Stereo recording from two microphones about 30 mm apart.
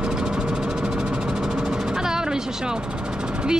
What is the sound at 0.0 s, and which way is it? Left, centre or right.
Engine, right.